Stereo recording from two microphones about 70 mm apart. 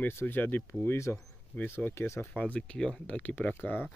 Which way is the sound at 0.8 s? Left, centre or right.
Left.